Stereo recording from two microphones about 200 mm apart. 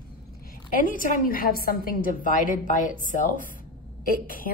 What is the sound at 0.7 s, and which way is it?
A woman's voice, 45° left (ahead or behind).